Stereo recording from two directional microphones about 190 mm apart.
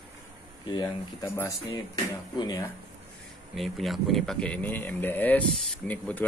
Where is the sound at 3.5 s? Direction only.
Centre (ahead or behind).